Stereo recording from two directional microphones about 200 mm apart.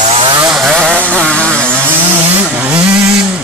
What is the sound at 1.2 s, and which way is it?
Vehicle, 5° left (ahead or behind).